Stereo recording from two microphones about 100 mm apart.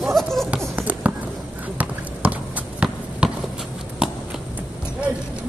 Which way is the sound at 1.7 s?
15° right (ahead or behind).